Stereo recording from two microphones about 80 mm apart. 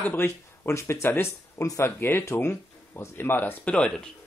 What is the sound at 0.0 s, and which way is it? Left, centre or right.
Speech, left.